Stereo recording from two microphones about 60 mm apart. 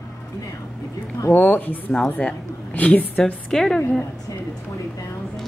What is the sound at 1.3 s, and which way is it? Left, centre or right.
Speech, left.